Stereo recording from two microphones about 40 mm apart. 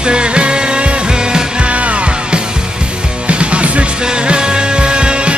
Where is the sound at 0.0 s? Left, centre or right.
Right.